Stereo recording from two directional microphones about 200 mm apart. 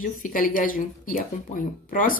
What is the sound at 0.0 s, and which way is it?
Speech, 40° left (ahead or behind).